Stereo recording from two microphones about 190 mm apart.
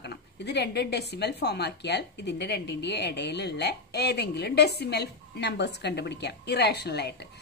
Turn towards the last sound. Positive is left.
turn(degrees=60)  # may be behind; listen again after turning